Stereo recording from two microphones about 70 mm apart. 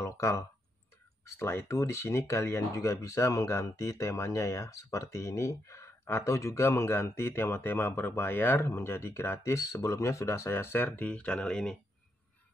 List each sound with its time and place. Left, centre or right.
0.0 s speech: left
1.2 s speech: left
9.6 s speech: left; by 11.7 s centre